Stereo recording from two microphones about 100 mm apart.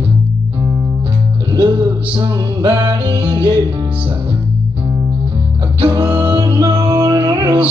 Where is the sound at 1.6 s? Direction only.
60° right (ahead or behind).